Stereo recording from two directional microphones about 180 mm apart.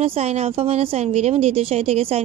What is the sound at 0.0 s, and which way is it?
Speech, 35° right (ahead or behind).